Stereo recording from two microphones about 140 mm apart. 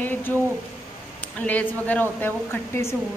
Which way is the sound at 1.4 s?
10° left (ahead or behind).